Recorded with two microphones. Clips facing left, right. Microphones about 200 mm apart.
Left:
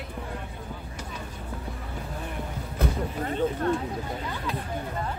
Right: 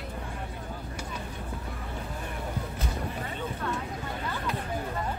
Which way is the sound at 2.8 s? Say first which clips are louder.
Left 10 dB; 50° left (ahead or behind).